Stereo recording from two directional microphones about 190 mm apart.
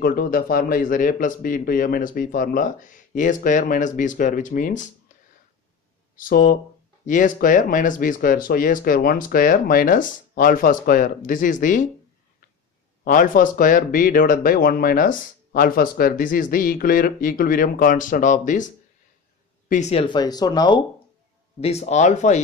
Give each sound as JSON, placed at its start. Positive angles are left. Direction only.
{"t": 0.0, "sound": "speech", "side_deg": 50}
{"t": 6.1, "sound": "speech", "side_deg": 45}
{"t": 13.0, "sound": "speech", "side_deg": 45}
{"t": 19.7, "sound": "speech", "side_deg": 35}
{"t": 21.5, "sound": "speech", "side_deg": 35}